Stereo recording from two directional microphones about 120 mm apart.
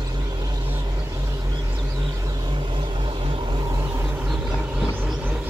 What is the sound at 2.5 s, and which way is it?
Vehicle, 45° right (ahead or behind).